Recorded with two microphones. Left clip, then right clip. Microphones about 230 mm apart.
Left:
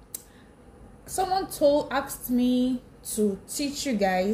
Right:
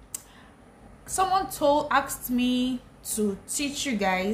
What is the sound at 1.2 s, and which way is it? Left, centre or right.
A woman's voice, centre.